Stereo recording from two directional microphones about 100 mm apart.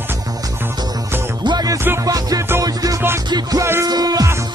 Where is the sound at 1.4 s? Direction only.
45° right (ahead or behind).